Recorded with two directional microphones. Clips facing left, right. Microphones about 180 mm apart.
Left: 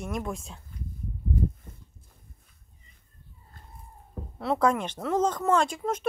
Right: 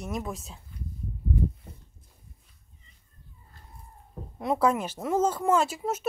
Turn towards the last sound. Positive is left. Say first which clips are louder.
# even
turn(degrees=-5)  # may be behind; listen again after turning